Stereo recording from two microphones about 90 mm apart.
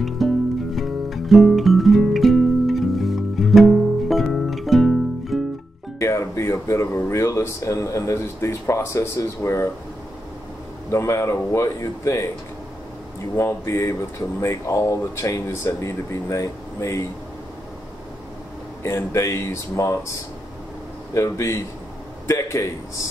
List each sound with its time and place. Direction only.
0.2 s music: centre (ahead or behind)
5.9 s music: 35° left (ahead or behind)
7.0 s speech: 30° left (ahead or behind)
10.9 s speech: 35° left (ahead or behind)
13.4 s speech: 30° left (ahead or behind)
18.8 s speech: 30° left (ahead or behind)
21.1 s a man's voice: 35° left (ahead or behind)